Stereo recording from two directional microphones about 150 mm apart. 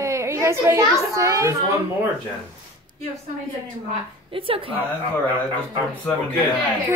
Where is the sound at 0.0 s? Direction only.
20° right (ahead or behind).